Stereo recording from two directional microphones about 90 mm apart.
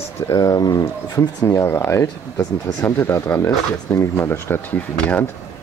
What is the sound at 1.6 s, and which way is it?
Speech, 25° left (ahead or behind).